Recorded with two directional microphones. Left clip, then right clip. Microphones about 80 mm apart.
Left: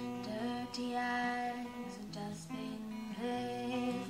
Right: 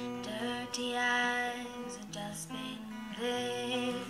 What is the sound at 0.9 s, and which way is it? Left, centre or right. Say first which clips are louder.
Female singing: right 5 dB; left.